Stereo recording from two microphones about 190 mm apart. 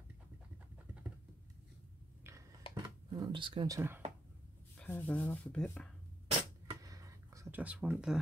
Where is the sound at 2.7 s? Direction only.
25° right (ahead or behind).